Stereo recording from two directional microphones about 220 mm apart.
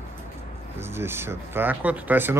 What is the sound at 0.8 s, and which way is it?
Speech, 10° right (ahead or behind).